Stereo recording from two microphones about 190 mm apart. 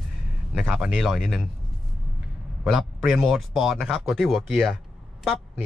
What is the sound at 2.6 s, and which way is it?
Speech, centre (ahead or behind).